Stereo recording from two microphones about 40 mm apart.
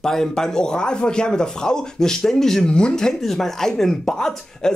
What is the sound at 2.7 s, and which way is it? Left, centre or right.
Speech, left.